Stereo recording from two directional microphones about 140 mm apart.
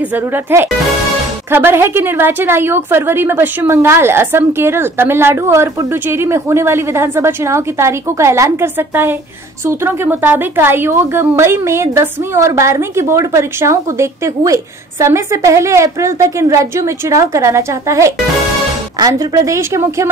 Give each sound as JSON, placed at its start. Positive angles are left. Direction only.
{"t": 0.1, "sound": "a woman's voice", "side_deg": -15}